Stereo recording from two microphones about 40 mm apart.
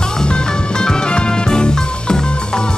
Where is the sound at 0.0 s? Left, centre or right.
Centre.